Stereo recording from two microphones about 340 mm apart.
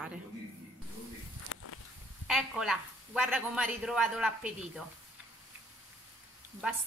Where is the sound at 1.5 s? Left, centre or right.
Left.